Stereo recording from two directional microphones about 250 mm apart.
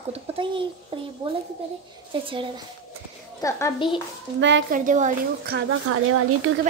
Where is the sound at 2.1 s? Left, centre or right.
Right.